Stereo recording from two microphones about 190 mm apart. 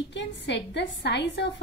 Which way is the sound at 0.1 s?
70° left (ahead or behind).